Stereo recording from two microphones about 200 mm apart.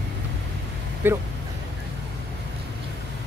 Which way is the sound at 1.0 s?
10° right (ahead or behind).